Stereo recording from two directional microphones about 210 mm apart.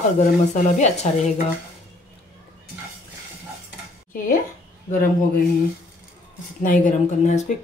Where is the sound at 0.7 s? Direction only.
35° left (ahead or behind).